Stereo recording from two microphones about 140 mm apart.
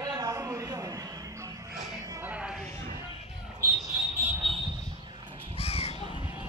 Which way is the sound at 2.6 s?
15° left (ahead or behind).